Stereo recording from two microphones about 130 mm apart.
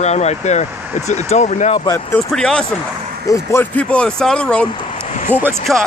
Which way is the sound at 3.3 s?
20° left (ahead or behind).